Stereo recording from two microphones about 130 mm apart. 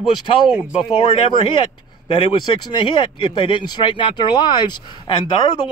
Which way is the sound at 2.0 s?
50° left (ahead or behind).